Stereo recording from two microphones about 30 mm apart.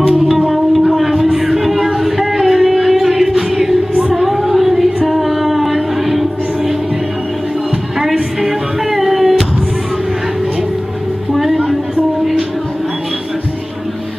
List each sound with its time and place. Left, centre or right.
0.5 s a sound: centre
5.0 s female singing: centre
8.4 s music: centre